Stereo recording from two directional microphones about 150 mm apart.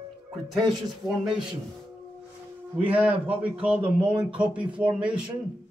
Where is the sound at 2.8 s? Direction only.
10° right (ahead or behind).